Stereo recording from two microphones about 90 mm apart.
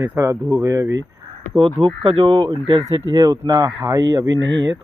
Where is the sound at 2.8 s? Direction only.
40° right (ahead or behind).